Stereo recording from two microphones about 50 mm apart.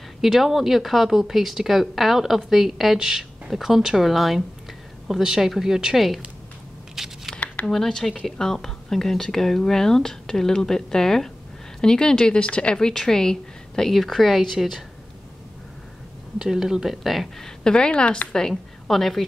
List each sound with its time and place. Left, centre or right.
0.2 s speech: centre
7.0 s a sound: centre
7.6 s a woman's voice: centre
16.3 s speech: centre
17.6 s speech: centre
18.5 s a woman's voice: centre